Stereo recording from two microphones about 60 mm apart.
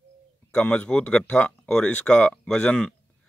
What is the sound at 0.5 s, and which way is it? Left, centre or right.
Speech, centre.